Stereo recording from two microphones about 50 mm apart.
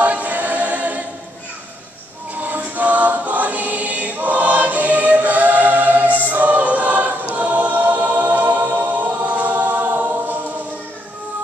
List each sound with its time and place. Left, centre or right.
0.0 s choir: right
2.3 s choir: right
7.3 s music: right